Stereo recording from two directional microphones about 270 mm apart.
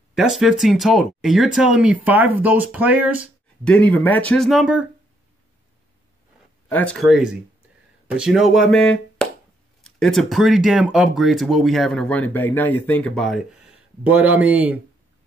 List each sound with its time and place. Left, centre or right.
0.1 s speech: centre
6.7 s speech: centre